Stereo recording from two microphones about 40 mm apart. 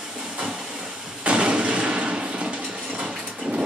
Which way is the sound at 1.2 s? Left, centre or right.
Right.